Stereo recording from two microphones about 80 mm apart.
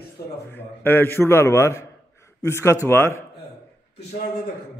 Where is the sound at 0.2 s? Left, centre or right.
Left.